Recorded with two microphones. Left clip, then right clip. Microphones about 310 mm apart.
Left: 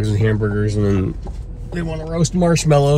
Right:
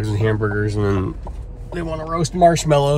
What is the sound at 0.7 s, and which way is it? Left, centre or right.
Speech, right.